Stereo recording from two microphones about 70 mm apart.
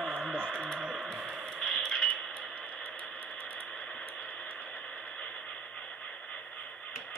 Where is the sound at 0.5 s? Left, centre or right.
Centre.